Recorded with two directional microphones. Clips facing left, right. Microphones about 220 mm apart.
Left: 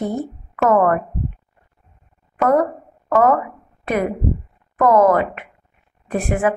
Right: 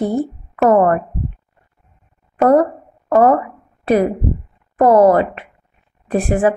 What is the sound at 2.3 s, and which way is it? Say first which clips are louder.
Speech: right 4 dB; 35° right (ahead or behind).